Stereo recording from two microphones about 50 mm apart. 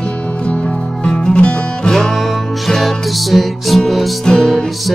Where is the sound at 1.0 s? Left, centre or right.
Centre.